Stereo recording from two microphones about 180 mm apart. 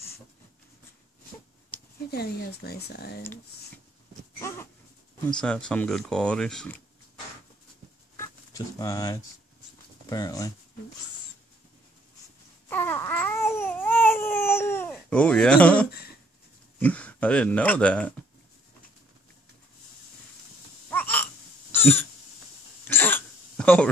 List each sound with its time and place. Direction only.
2.0 s speech: 60° left (ahead or behind)
4.4 s dog: 15° left (ahead or behind)
5.4 s speech: 5° left (ahead or behind)
8.2 s speech: 20° left (ahead or behind)
12.6 s babbling: 15° left (ahead or behind)
14.9 s speech: 5° left (ahead or behind)
20.9 s a sound: 10° left (ahead or behind)
22.8 s throat clearing: 10° left (ahead or behind)